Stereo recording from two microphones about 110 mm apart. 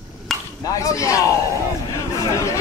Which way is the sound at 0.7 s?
30° left (ahead or behind).